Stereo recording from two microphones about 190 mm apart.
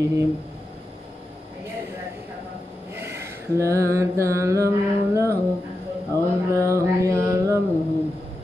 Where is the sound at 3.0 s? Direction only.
15° right (ahead or behind).